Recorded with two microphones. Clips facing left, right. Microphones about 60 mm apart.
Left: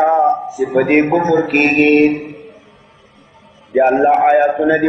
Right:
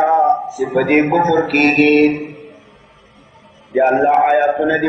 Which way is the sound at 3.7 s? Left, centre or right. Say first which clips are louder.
Left 1 dB; centre.